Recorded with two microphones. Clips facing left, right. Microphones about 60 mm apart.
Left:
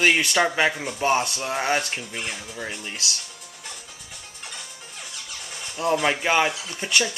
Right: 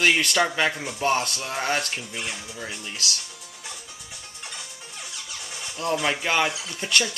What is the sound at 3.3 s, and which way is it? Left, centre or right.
Music, centre.